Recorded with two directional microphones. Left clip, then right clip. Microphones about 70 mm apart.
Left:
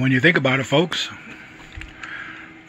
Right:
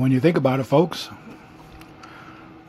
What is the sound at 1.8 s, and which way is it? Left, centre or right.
Rowboat, right.